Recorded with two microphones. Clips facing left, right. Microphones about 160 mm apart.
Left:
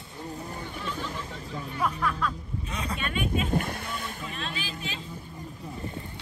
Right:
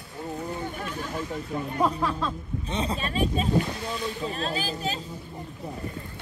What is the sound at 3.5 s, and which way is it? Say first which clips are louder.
Speech: right 3 dB; 55° left (ahead or behind).